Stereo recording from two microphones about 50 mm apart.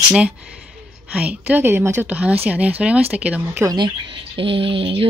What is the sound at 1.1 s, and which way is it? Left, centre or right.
Speech, right.